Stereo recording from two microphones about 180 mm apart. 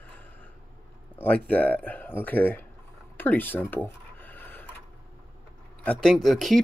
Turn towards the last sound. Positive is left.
turn(degrees=0)  # may be behind; listen again after turning